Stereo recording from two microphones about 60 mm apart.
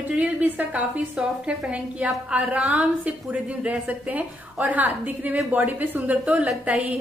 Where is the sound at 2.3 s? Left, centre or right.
Centre.